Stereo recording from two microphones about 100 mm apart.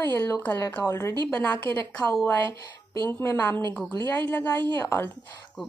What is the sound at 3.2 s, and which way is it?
Speech, 25° left (ahead or behind).